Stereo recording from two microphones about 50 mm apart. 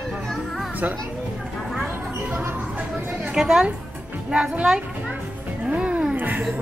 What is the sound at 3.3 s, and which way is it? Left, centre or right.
Speech, centre.